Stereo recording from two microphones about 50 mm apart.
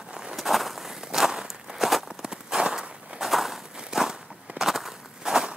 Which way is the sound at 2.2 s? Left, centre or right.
Centre.